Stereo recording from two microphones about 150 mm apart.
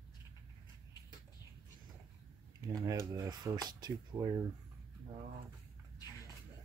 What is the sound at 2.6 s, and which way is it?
Speech, 20° right (ahead or behind).